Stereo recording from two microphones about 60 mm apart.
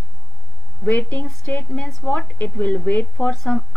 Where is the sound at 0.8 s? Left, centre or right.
Left.